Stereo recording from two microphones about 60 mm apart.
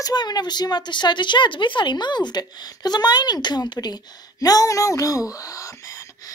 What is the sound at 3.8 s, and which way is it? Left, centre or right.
Speech, left.